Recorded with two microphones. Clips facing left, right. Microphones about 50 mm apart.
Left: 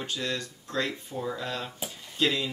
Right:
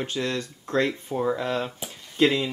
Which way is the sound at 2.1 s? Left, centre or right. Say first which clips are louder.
Right 6 dB; right.